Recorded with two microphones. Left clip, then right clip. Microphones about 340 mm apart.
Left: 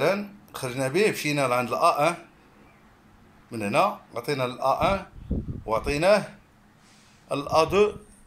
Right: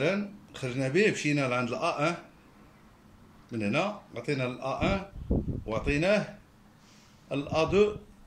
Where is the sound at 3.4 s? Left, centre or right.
Left.